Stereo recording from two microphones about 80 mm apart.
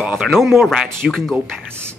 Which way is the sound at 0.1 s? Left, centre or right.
Centre.